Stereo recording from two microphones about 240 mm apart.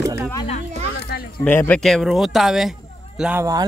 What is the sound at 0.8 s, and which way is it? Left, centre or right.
Children playing, left.